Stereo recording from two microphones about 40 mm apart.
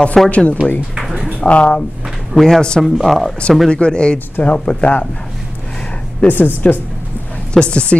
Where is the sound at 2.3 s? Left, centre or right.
Centre.